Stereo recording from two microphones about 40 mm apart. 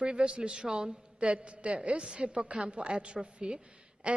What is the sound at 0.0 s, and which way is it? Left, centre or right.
A woman's voice, right.